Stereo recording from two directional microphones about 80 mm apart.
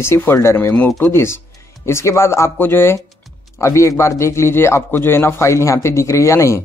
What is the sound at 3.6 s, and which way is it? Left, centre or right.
A man's voice, left.